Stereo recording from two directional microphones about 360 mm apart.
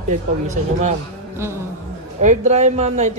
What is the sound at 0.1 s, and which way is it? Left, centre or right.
Speech, centre.